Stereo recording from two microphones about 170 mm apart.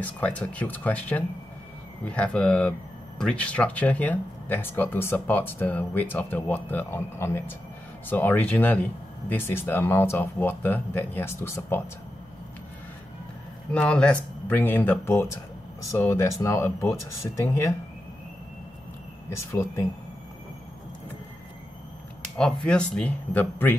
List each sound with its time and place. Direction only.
0.0 s speech: 10° left (ahead or behind)
13.7 s speech: 5° left (ahead or behind)
19.2 s speech: 15° left (ahead or behind)
22.4 s speech: 5° left (ahead or behind)